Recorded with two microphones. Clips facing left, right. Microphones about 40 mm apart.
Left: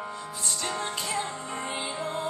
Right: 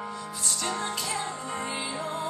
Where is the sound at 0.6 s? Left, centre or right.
Left.